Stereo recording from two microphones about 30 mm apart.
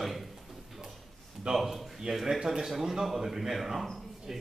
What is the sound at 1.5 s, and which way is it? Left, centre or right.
A man's voice, centre.